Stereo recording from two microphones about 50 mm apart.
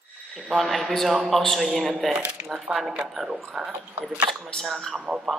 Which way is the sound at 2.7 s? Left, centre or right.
Right.